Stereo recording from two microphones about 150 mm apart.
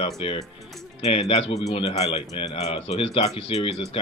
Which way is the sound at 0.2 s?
40° left (ahead or behind).